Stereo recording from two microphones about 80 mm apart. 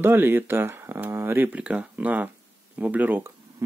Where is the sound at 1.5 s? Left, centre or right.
Centre.